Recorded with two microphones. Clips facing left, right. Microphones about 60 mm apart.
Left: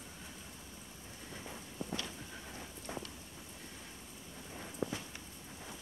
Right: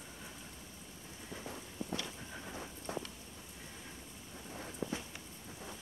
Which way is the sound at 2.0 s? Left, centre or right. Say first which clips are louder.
Right 1 dB; centre.